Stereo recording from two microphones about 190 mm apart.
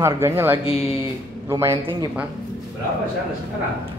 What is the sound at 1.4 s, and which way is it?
Speech, 15° right (ahead or behind).